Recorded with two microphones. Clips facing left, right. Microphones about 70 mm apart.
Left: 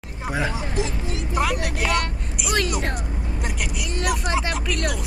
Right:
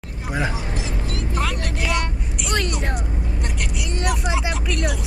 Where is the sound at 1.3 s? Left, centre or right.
Centre.